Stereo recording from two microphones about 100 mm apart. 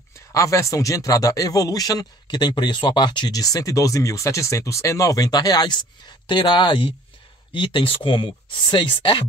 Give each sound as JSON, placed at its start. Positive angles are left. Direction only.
{"t": 0.3, "sound": "speech", "side_deg": 35}